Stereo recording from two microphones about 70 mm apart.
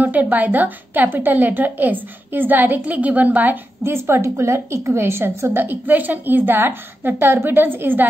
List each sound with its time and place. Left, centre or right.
0.0 s a woman's voice: right
3.8 s a woman's voice: right